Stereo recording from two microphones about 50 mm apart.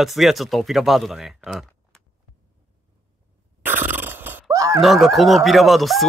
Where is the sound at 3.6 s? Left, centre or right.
Right.